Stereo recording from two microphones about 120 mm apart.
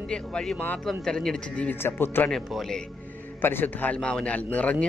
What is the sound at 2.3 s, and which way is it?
Speech, centre (ahead or behind).